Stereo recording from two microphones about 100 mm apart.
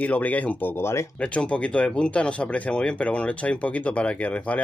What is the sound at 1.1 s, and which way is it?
Speech, 10° left (ahead or behind).